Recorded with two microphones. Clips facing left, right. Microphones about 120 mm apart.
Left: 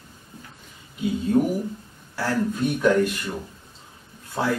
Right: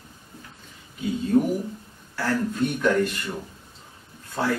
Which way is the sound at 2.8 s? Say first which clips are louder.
Left 3 dB; 10° left (ahead or behind).